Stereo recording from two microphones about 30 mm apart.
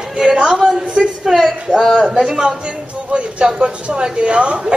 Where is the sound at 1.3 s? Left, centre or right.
Centre.